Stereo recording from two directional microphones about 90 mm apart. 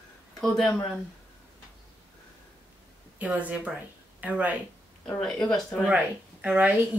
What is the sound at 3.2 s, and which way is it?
Speech, 15° right (ahead or behind).